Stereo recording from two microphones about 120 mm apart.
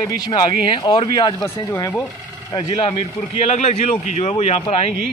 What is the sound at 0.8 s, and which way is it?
Speech, 40° left (ahead or behind).